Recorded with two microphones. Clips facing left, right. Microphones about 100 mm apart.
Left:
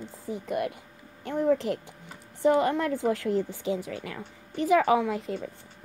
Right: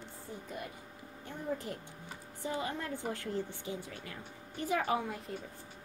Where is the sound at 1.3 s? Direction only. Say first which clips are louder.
Left 14 dB; 85° left.